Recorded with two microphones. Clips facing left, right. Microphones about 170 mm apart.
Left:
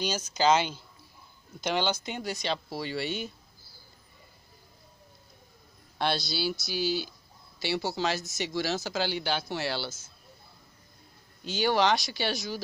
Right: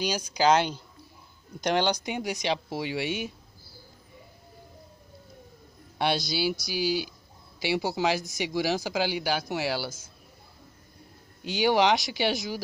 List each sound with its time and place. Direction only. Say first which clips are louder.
0.0 s speech: right 2 dB; 10° right (ahead or behind)
5.9 s speech: right 3 dB; 15° right (ahead or behind)
11.4 s speech: right 3 dB; 15° right (ahead or behind)